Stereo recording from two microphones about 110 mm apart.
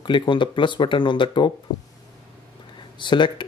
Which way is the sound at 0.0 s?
45° left (ahead or behind).